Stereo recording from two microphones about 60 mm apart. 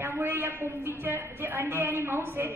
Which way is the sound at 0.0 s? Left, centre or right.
Right.